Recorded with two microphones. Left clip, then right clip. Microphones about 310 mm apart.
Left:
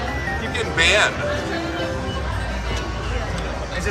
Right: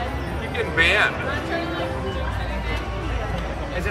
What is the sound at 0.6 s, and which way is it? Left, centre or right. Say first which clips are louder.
Speech: left 1 dB; centre.